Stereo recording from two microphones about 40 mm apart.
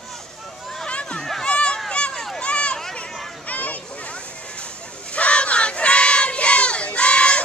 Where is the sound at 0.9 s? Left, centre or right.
Left.